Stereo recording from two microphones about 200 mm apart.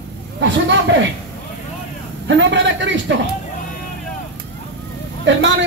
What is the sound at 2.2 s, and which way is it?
Speech, 65° right (ahead or behind).